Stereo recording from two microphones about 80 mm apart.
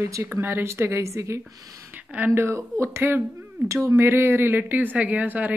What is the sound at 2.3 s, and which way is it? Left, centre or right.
A woman's voice, right.